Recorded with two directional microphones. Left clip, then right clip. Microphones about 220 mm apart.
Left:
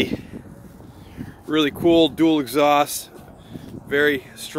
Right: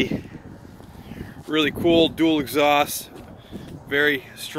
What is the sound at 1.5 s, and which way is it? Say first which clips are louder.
Speech: left 2 dB; 25° left (ahead or behind).